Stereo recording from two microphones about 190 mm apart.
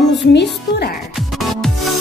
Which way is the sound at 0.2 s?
65° left (ahead or behind).